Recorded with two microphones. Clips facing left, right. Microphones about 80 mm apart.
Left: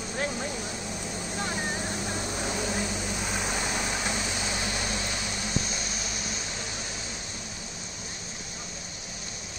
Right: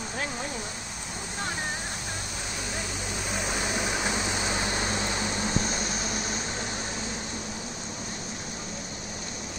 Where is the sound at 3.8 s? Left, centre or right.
Centre.